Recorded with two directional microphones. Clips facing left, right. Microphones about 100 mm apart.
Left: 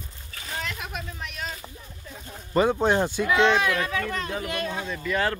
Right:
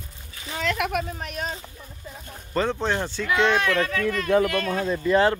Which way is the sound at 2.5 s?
10° left (ahead or behind).